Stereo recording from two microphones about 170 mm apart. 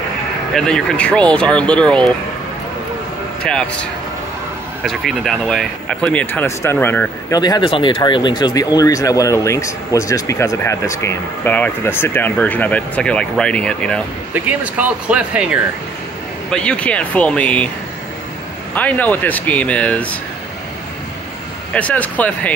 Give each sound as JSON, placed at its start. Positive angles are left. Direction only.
{"t": 0.6, "sound": "speech", "side_deg": 5}
{"t": 3.4, "sound": "speech", "side_deg": 5}
{"t": 7.3, "sound": "speech", "side_deg": 25}
{"t": 14.3, "sound": "speech", "side_deg": -10}
{"t": 16.4, "sound": "speech", "side_deg": 5}
{"t": 18.8, "sound": "speech", "side_deg": 10}
{"t": 21.7, "sound": "speech", "side_deg": 10}